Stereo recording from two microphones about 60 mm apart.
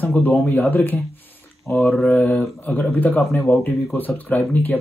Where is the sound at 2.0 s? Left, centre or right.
Left.